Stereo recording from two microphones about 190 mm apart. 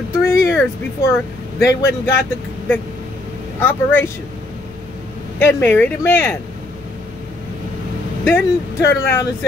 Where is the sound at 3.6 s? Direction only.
10° left (ahead or behind).